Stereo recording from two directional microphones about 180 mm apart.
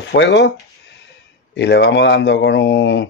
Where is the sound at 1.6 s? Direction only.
70° left (ahead or behind).